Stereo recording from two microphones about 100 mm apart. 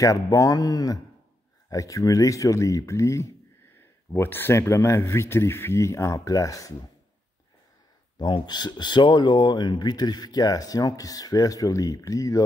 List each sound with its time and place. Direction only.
0.0 s speech: 35° left (ahead or behind)
8.2 s speech: 45° left (ahead or behind)